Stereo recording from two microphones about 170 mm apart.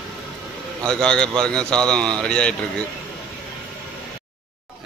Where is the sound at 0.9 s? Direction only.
5° left (ahead or behind).